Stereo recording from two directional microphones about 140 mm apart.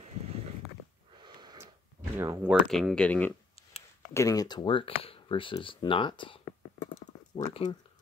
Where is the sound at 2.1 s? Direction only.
25° right (ahead or behind).